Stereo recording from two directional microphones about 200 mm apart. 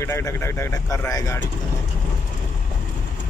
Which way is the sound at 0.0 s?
15° left (ahead or behind).